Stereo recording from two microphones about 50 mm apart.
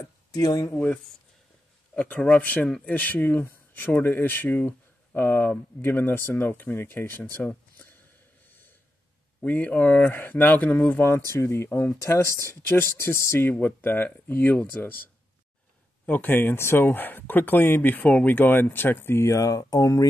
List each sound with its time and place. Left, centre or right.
2.0 s speech: left
7.4 s speech: left
9.5 s speech: left
10.1 s speech: left
11.0 s speech: left
13.5 s speech: left
16.1 s speech: left
18.0 s speech: left
19.2 s speech: left